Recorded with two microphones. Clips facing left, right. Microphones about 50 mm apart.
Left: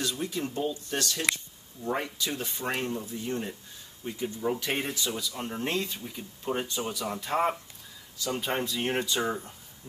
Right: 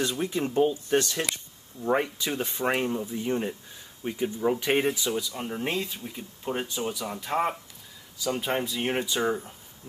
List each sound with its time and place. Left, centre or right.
0.0 s speech: right
4.9 s speech: centre